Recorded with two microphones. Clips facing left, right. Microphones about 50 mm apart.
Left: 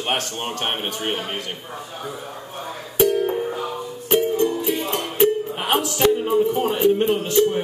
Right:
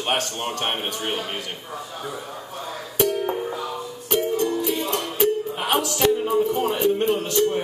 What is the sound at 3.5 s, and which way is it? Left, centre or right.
Music, left.